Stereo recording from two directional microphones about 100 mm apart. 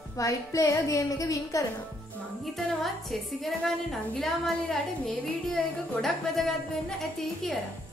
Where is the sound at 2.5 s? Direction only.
Centre (ahead or behind).